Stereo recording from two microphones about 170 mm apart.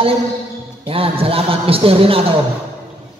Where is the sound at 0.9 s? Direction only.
35° right (ahead or behind).